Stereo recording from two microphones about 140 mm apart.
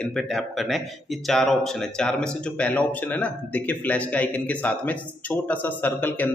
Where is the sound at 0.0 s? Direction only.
5° left (ahead or behind).